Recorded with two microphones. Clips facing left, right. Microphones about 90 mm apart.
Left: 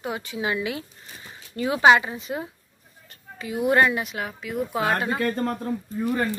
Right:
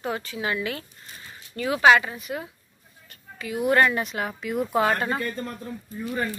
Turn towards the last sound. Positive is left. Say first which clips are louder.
# left 4 dB
turn(degrees=50)  # may be behind; listen again after turning